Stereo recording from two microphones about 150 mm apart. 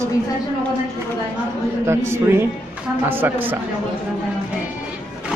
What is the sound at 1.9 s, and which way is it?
Speech, 15° right (ahead or behind).